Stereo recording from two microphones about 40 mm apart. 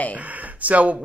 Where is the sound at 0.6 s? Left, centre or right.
Right.